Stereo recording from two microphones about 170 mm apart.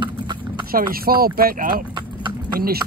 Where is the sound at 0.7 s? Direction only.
60° right (ahead or behind).